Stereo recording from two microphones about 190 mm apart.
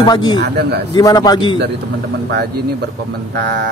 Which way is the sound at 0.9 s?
20° left (ahead or behind).